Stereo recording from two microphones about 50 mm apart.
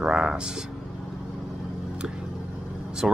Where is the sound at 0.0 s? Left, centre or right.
Centre.